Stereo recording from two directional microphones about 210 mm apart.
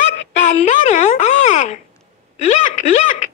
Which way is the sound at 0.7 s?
35° left (ahead or behind).